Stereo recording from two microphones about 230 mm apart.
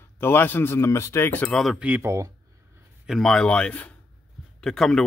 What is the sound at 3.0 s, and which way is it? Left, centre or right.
Speech, centre.